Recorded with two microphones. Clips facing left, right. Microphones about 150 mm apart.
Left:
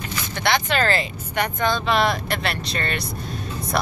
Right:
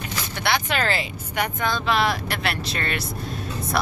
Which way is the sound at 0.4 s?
10° right (ahead or behind).